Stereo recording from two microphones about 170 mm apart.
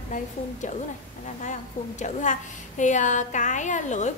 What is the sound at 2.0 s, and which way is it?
A woman's voice, 45° left (ahead or behind).